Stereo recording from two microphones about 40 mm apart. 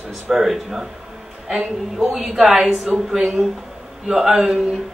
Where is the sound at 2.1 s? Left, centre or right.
Centre.